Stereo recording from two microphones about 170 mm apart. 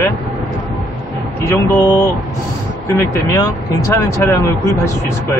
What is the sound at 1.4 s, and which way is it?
Speech, 15° left (ahead or behind).